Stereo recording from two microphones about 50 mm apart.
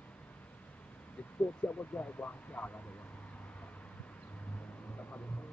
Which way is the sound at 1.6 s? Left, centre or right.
Left.